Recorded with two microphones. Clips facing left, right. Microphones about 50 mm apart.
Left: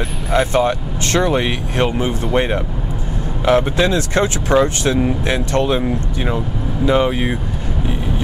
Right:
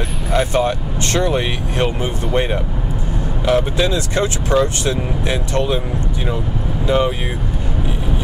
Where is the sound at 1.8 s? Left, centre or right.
Centre.